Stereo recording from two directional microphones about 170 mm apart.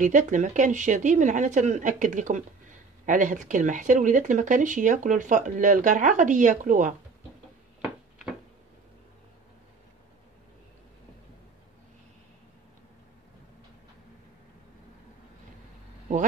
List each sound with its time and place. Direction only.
0.0 s speech: 50° right (ahead or behind)